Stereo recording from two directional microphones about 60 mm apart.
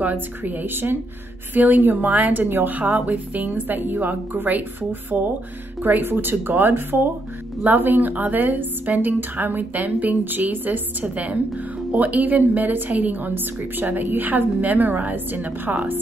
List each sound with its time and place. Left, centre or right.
0.0 s a woman's voice: right